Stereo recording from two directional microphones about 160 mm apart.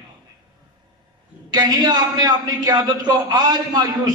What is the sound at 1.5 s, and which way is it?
A man's voice, 25° right (ahead or behind).